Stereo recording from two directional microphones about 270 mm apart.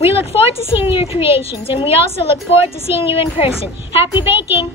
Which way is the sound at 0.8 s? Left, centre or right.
Centre.